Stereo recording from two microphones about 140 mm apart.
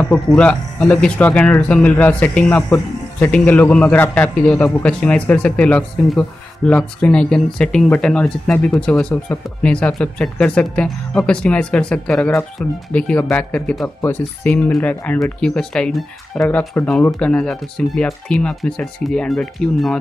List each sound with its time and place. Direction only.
0.3 s speech: 5° left (ahead or behind)